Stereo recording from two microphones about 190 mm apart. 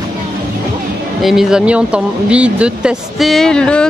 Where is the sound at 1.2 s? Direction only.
Centre (ahead or behind).